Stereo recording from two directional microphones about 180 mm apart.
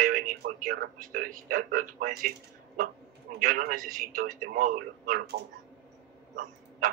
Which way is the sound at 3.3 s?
50° right (ahead or behind).